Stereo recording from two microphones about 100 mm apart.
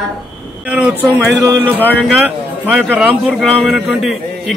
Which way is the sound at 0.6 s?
15° right (ahead or behind).